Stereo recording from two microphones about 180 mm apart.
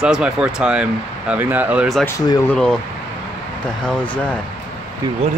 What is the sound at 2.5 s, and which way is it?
Speech, 5° left (ahead or behind).